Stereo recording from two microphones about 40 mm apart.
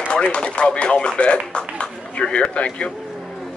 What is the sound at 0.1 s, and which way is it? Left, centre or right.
Speech, left.